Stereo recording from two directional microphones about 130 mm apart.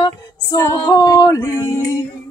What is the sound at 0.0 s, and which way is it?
Female singing, 25° left (ahead or behind).